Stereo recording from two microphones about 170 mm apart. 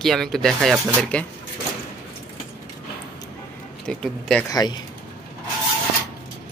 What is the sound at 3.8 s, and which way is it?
Speech, 5° left (ahead or behind).